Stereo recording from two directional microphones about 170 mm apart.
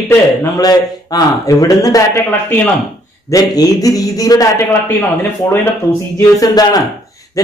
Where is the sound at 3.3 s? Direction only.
20° left (ahead or behind).